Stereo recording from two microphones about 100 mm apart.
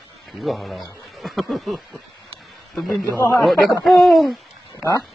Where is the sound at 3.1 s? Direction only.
30° left (ahead or behind).